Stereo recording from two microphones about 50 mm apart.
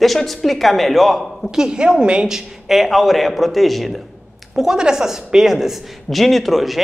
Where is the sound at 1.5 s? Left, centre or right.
Centre.